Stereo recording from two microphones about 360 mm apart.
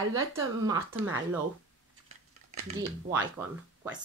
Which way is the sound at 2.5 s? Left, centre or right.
Right.